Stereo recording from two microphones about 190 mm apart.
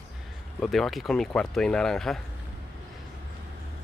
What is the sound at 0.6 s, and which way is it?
Speech, centre (ahead or behind).